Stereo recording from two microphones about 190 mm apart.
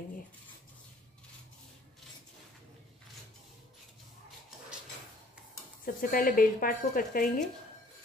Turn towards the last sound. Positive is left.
turn(degrees=50)  # may be behind; listen again after turning